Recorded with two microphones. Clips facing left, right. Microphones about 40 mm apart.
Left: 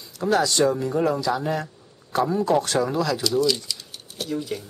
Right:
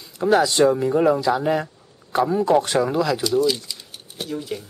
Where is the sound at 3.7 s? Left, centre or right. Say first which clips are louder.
Left 2 dB; right.